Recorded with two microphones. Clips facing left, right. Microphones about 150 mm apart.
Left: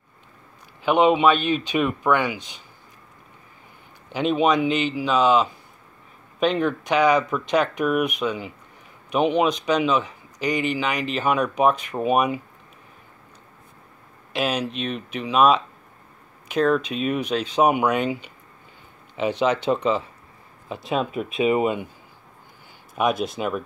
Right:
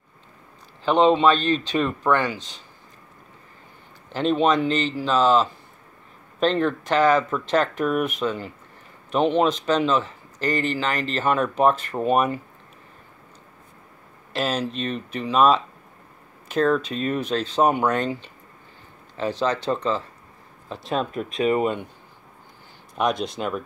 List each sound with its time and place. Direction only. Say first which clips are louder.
0.8 s speech: even; 10° left (ahead or behind)
4.1 s speech: even; 10° left (ahead or behind)
14.3 s speech: even; 10° left (ahead or behind)
20.6 s speech: left 1 dB; 5° left (ahead or behind)
22.9 s speech: left 1 dB; 5° left (ahead or behind)